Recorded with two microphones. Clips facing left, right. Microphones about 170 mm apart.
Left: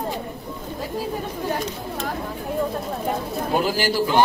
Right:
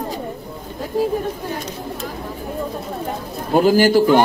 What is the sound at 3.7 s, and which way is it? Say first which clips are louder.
Speech: right 8 dB; 50° right (ahead or behind).